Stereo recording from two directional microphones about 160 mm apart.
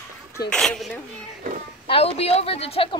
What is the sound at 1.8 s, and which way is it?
A woman's voice, 35° left (ahead or behind).